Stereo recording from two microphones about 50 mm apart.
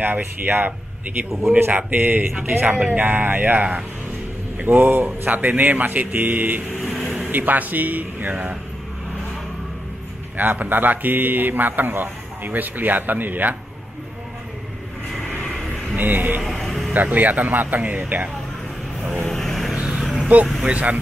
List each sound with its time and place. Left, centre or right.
0.0 s speech: right
3.0 s speech: right
4.6 s speech: right
6.8 s vehicle: centre
7.2 s speech: right
10.3 s speech: right
15.2 s vehicle: left
15.5 s a sound: centre
16.0 s speech: right
16.4 s vehicle: centre
16.9 s speech: right
19.2 s vehicle: centre
19.7 s vehicle: centre
20.6 s speech: right